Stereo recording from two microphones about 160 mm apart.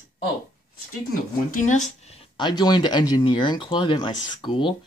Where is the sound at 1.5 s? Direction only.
50° left (ahead or behind).